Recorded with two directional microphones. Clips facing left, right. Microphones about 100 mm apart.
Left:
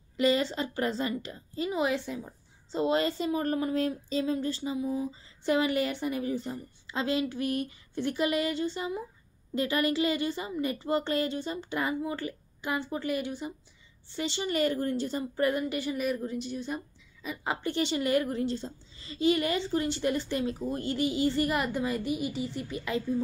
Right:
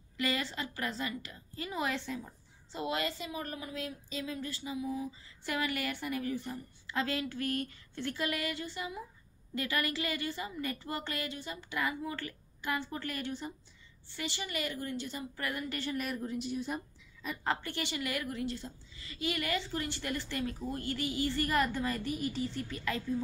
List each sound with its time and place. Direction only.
0.2 s speech: 25° left (ahead or behind)
2.7 s speech: 30° left (ahead or behind); by 13.5 s 10° left (ahead or behind)
14.1 s speech: 25° left (ahead or behind)
15.7 s a woman's voice: 10° left (ahead or behind)
17.6 s speech: 25° left (ahead or behind)